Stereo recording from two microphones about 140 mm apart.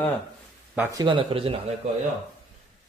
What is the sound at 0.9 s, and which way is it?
Speech, 25° right (ahead or behind).